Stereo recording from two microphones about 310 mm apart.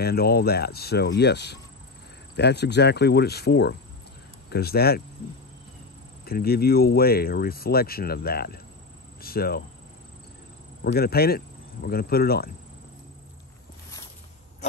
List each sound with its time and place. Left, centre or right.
0.0 s speech: left
6.2 s speech: left
10.8 s speech: left